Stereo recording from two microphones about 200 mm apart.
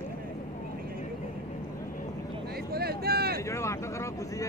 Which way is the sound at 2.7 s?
50° right (ahead or behind).